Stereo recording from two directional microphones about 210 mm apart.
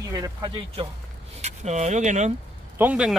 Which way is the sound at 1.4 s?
35° right (ahead or behind).